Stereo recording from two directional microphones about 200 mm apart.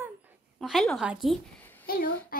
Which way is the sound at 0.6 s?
Centre (ahead or behind).